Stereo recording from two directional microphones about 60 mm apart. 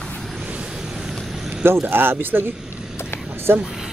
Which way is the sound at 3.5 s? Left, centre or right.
Right.